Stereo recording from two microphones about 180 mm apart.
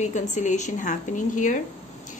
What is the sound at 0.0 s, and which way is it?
A woman's voice, 40° left (ahead or behind).